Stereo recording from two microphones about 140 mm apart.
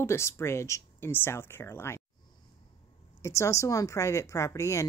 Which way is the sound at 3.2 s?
20° left (ahead or behind).